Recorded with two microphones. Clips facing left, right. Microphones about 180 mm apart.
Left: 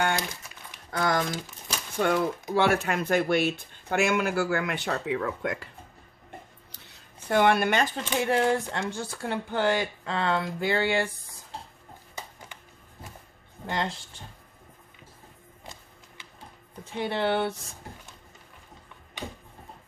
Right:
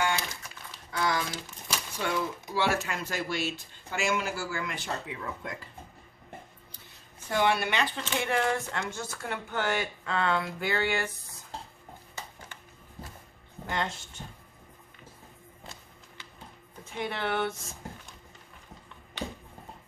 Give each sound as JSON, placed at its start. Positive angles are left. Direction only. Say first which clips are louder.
{"t": 0.9, "sound": "a sound", "louder": "left 4 dB", "side_deg": 50}
{"t": 2.0, "sound": "speech", "louder": "left 7 dB", "side_deg": 55}
{"t": 7.2, "sound": "speech", "louder": "left 5 dB", "side_deg": 55}
{"t": 13.7, "sound": "speech", "louder": "left 2 dB", "side_deg": 30}
{"t": 17.0, "sound": "speech", "louder": "left 4 dB", "side_deg": 30}